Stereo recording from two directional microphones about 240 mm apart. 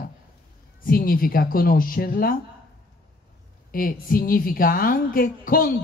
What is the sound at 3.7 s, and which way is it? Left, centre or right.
A woman's voice, left.